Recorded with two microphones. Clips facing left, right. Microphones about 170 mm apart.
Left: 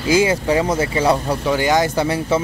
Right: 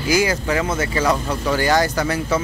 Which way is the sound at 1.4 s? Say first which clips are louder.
Even; 20° left (ahead or behind).